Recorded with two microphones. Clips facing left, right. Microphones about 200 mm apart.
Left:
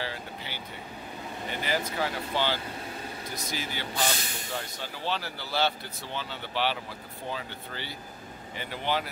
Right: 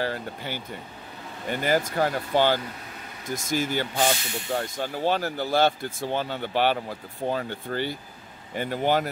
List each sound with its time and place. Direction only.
0.0 s speech: 50° right (ahead or behind)